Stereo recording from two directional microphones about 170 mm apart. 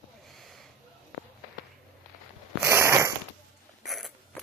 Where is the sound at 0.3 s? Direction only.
Centre (ahead or behind).